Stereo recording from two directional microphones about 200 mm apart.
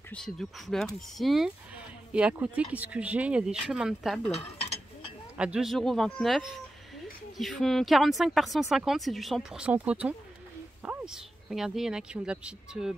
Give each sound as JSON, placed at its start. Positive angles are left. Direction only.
{"t": 0.1, "sound": "speech", "side_deg": 0}
{"t": 4.3, "sound": "mechanisms", "side_deg": 30}
{"t": 5.4, "sound": "speech", "side_deg": -5}